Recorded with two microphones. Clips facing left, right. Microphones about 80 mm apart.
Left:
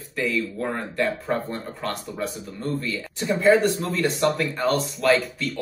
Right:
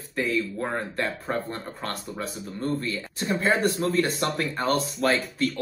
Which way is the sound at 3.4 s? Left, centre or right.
Right.